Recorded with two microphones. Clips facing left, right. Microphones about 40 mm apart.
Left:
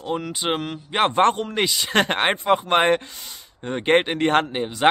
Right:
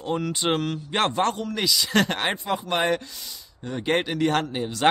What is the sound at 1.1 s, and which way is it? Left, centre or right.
Speech, left.